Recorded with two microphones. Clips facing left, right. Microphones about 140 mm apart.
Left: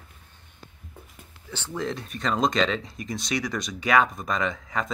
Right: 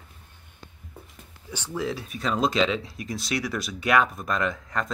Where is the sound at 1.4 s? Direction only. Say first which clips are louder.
Right 1 dB; 10° right (ahead or behind).